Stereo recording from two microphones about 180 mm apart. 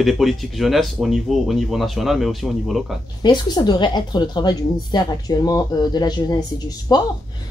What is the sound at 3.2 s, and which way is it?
A woman's voice, 25° left (ahead or behind).